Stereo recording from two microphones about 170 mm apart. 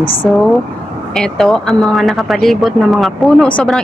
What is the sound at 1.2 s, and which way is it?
Speech, 5° left (ahead or behind).